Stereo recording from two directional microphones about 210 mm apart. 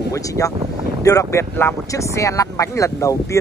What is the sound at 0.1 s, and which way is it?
Speech, 15° left (ahead or behind).